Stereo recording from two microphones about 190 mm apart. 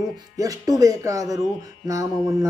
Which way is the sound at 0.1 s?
20° right (ahead or behind).